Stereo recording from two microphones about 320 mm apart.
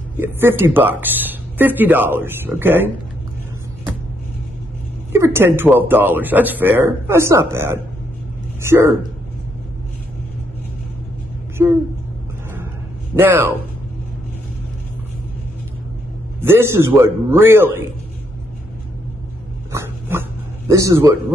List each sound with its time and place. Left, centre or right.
0.2 s speech: centre
5.1 s speech: centre
11.6 s speech: centre
13.2 s speech: centre
16.3 s speech: centre
19.7 s dog: centre